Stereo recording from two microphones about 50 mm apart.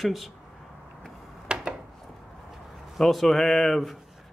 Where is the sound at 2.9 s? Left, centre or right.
Centre.